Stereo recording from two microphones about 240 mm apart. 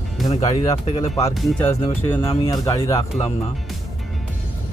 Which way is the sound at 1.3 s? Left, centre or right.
Centre.